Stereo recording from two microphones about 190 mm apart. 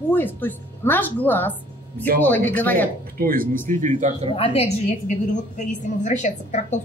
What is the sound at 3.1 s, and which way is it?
Speech, 50° right (ahead or behind).